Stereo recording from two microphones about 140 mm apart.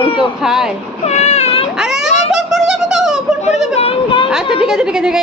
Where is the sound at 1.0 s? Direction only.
50° left (ahead or behind).